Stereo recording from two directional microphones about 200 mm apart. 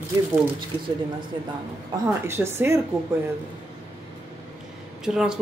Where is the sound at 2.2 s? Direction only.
10° right (ahead or behind).